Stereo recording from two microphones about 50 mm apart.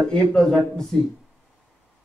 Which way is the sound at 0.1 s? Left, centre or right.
Centre.